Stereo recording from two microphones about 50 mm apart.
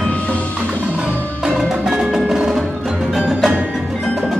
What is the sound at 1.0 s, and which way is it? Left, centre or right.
Music, centre.